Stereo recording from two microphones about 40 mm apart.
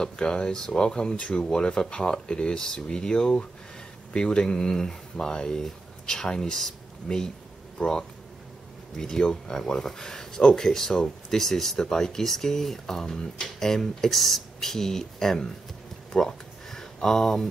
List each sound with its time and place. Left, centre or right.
0.0 s speech: centre
7.8 s speech: left
8.9 s speech: centre
16.1 s a sound: centre